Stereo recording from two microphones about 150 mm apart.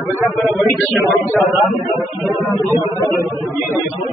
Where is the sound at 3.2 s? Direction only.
15° right (ahead or behind).